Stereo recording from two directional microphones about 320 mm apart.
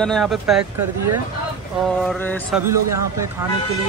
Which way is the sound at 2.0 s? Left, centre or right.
Centre.